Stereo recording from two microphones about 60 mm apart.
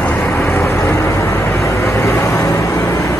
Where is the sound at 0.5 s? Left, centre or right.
Left.